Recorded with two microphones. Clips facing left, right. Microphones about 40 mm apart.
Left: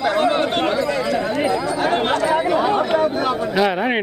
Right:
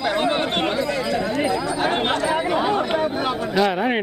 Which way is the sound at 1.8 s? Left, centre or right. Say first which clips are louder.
Left 3 dB; centre.